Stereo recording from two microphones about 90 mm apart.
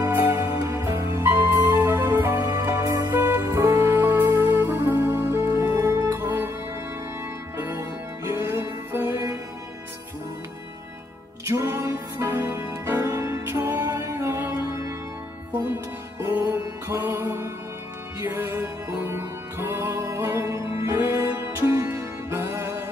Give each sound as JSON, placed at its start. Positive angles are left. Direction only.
{"t": 0.1, "sound": "music", "side_deg": -25}
{"t": 7.5, "sound": "music", "side_deg": -30}
{"t": 11.4, "sound": "music", "side_deg": -30}
{"t": 16.2, "sound": "music", "side_deg": -25}